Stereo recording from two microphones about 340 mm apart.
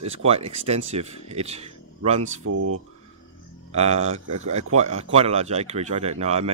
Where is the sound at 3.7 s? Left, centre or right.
Centre.